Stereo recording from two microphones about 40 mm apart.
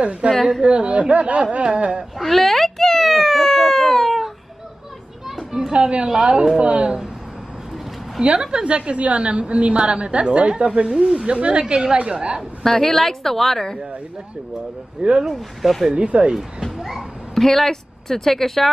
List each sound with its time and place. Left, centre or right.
0.0 s a woman's voice: right
2.1 s a sound: centre
5.7 s a woman's voice: right
6.6 s a woman's voice: right
8.2 s a woman's voice: right
12.6 s a woman's voice: centre
15.0 s a woman's voice: right
15.2 s speech: centre
15.9 s a woman's voice: right
17.4 s speech: centre